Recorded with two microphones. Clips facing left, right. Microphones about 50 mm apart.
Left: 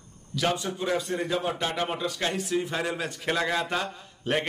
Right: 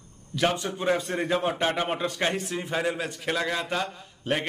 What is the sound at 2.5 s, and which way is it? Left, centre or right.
A man's voice, centre.